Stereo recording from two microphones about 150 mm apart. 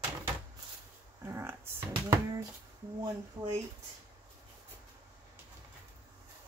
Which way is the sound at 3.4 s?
10° right (ahead or behind).